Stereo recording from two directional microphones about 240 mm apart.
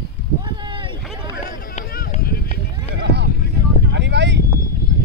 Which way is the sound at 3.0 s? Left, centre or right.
Right.